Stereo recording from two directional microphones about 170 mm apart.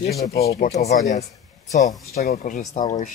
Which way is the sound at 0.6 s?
40° left (ahead or behind).